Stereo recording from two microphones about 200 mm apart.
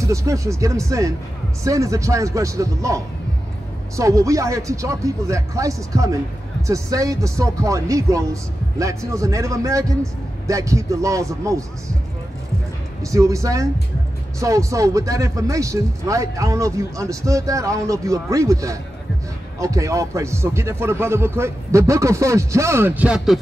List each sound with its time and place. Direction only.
0.0 s speech: 15° right (ahead or behind)
13.0 s speech: 15° right (ahead or behind)